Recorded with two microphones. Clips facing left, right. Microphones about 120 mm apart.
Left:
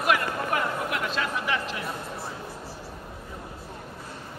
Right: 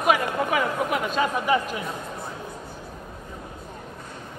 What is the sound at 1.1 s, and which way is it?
Speech, 45° right (ahead or behind).